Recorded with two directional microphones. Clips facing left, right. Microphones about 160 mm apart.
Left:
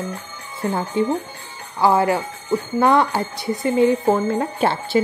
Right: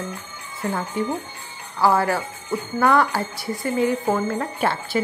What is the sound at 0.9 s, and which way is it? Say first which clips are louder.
Speech: left 5 dB; 25° left (ahead or behind).